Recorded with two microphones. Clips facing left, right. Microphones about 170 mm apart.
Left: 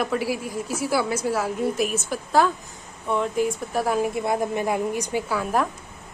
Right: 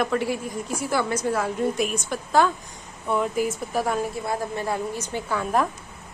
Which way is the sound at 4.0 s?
15° left (ahead or behind).